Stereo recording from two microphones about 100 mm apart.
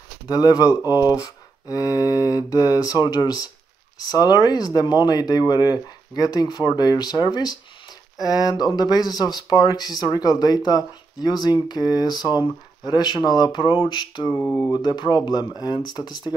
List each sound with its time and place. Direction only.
0.3 s speech: 40° left (ahead or behind)